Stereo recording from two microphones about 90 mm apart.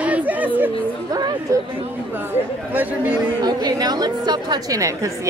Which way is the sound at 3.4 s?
45° right (ahead or behind).